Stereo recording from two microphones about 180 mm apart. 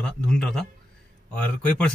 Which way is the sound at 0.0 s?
5° left (ahead or behind).